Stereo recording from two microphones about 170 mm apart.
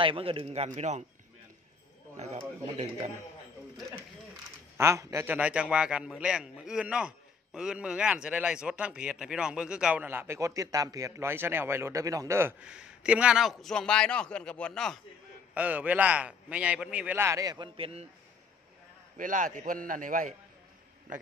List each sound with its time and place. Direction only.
0.0 s a man's voice: 30° right (ahead or behind)
4.7 s a man's voice: 15° right (ahead or behind); by 15.0 s 5° left (ahead or behind)
15.5 s a man's voice: 10° right (ahead or behind)
17.7 s a man's voice: 35° right (ahead or behind)
19.1 s a man's voice: 50° right (ahead or behind)